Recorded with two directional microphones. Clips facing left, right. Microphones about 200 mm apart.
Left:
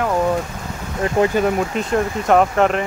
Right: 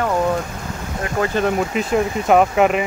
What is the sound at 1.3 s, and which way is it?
Speech, centre (ahead or behind).